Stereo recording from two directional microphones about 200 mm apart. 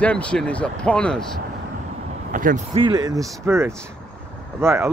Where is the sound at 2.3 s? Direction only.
40° right (ahead or behind).